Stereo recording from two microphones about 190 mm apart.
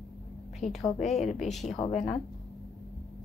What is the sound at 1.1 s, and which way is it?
Speech, 35° left (ahead or behind).